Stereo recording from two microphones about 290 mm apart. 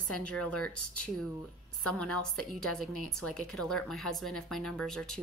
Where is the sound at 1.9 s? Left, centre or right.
Centre.